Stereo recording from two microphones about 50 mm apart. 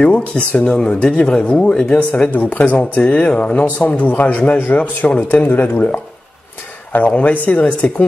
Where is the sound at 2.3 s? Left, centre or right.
Left.